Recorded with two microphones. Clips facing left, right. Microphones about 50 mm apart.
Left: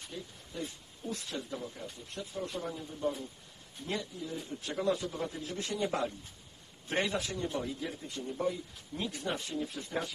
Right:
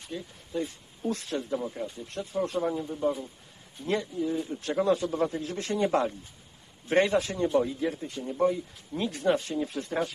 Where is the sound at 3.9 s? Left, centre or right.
Right.